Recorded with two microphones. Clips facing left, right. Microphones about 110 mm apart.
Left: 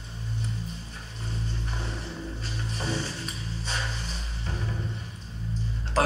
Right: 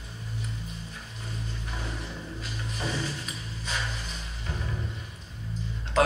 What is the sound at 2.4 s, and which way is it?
Music, 30° left (ahead or behind).